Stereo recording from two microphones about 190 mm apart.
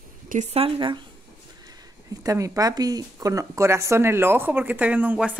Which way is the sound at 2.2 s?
15° right (ahead or behind).